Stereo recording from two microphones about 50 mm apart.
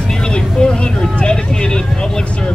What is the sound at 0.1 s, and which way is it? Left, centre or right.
Vehicle, centre.